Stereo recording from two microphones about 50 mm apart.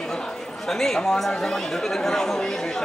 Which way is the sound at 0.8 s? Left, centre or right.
Centre.